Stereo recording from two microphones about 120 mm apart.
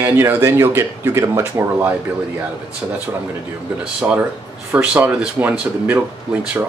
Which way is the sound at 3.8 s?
10° right (ahead or behind).